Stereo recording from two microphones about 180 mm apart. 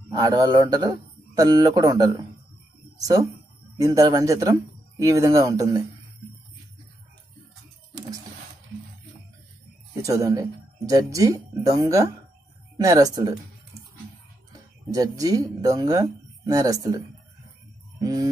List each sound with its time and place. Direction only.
0.1 s a man's voice: 25° right (ahead or behind)
10.0 s a man's voice: 20° right (ahead or behind)
14.9 s a man's voice: 20° right (ahead or behind)
17.9 s a sound: 20° right (ahead or behind)